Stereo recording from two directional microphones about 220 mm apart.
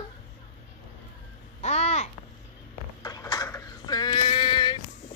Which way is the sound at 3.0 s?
15° left (ahead or behind).